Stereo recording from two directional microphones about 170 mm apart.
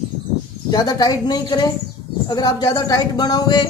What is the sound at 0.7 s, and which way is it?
A woman's voice, 25° left (ahead or behind).